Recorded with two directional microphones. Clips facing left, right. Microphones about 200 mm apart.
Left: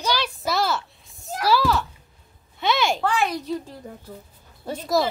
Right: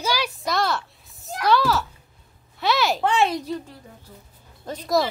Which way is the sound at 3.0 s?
25° right (ahead or behind).